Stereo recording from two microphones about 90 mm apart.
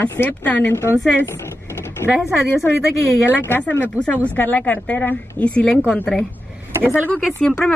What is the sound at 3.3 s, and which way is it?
Speech, 20° left (ahead or behind).